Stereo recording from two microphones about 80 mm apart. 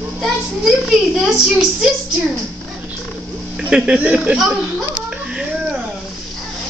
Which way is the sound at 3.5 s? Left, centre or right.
Centre.